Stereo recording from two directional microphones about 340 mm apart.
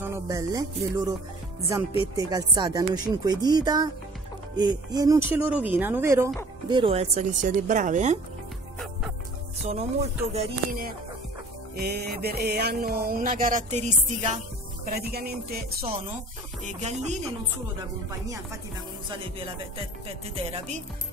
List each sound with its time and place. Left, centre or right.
0.0 s speech: centre
2.1 s speech: centre
10.3 s music: right
20.5 s music: centre